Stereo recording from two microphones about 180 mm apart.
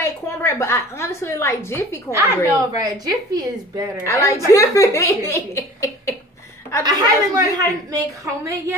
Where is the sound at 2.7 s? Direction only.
20° right (ahead or behind).